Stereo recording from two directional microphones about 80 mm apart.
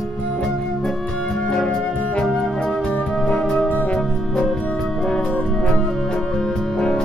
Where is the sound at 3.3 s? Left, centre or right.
Centre.